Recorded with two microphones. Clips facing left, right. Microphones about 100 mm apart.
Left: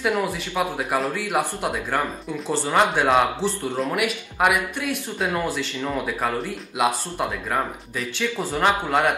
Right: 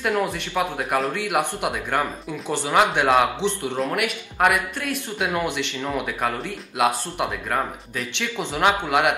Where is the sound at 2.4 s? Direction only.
10° right (ahead or behind).